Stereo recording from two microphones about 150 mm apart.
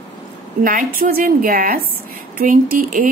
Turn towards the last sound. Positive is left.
turn(degrees=-70)  # may be behind; listen again after turning